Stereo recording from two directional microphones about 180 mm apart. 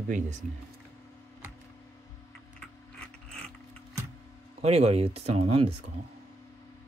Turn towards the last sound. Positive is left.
turn(degrees=-35)  # may be behind; listen again after turning